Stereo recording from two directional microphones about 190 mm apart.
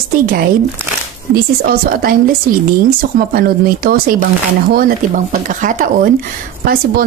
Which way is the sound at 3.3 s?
50° right (ahead or behind).